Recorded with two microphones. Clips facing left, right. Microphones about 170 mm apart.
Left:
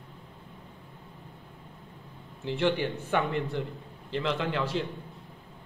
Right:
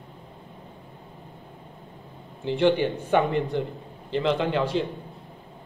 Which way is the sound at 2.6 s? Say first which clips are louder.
Right 6 dB; 20° right (ahead or behind).